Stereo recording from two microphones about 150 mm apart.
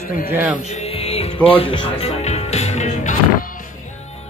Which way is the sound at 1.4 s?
40° left (ahead or behind).